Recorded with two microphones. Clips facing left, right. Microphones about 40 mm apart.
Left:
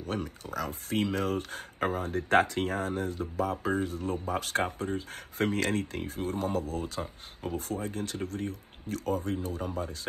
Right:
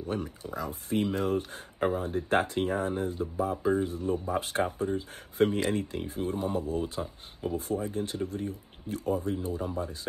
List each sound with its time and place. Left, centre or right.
0.1 s speech: left
7.0 s speech: left
7.5 s speech: left